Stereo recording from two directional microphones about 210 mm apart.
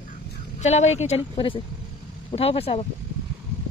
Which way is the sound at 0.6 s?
30° left (ahead or behind).